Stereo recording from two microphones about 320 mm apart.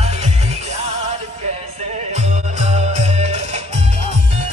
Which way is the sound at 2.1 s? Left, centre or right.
Right.